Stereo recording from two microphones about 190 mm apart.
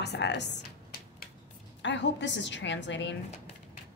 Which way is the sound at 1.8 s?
70° left (ahead or behind).